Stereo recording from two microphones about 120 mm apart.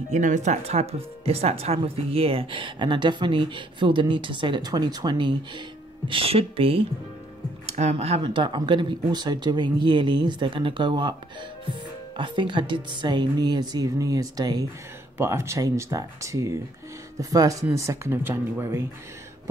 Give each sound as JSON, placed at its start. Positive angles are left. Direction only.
{"t": 0.1, "sound": "speech", "side_deg": -85}
{"t": 6.0, "sound": "speech", "side_deg": -50}
{"t": 7.7, "sound": "speech", "side_deg": -65}
{"t": 8.2, "sound": "speech", "side_deg": -40}
{"t": 12.2, "sound": "speech", "side_deg": -40}
{"t": 15.1, "sound": "speech", "side_deg": -25}